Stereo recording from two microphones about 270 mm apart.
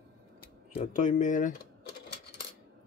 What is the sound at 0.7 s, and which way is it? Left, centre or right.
Speech, left.